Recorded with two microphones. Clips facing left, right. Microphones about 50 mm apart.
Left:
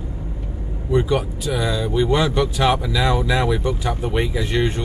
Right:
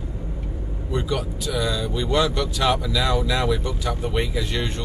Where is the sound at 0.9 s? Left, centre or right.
Left.